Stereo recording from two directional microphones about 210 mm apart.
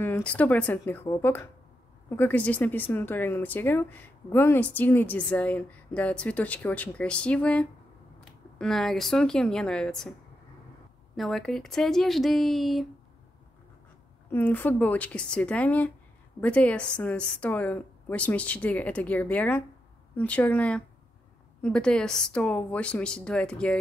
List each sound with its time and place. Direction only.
0.0 s a woman's voice: 10° left (ahead or behind)
11.1 s a woman's voice: centre (ahead or behind)
14.3 s a woman's voice: 10° left (ahead or behind)